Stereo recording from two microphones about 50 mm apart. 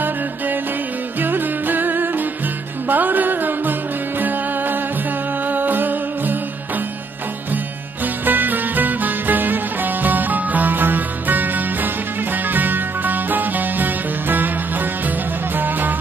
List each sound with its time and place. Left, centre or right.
1.2 s music: right
7.5 s music: right